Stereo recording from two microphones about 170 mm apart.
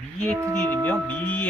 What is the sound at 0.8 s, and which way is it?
Speech, 10° left (ahead or behind).